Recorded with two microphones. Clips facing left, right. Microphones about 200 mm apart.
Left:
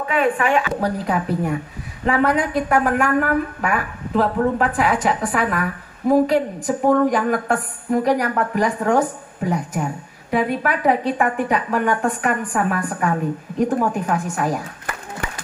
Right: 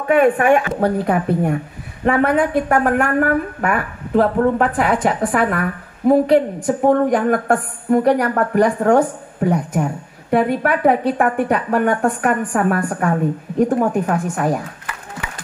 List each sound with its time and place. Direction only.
0.1 s a woman's voice: 50° right (ahead or behind)